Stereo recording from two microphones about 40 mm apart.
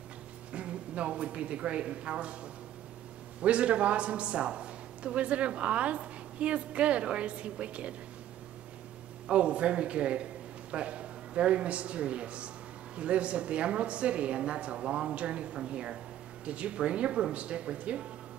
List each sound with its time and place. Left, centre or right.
0.5 s speech: right
3.4 s a man's voice: right
9.3 s a man's voice: right